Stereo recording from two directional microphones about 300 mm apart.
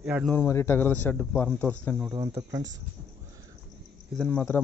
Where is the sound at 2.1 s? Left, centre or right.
Centre.